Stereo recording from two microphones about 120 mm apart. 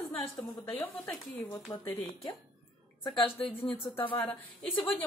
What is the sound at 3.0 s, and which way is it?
Speech, 40° left (ahead or behind).